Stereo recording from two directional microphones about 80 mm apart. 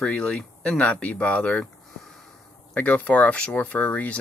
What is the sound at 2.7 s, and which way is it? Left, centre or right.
Speech, centre.